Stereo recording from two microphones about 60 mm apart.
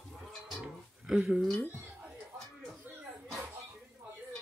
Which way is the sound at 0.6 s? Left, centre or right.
Centre.